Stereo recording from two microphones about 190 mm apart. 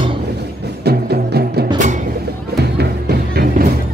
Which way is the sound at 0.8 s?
55° right (ahead or behind).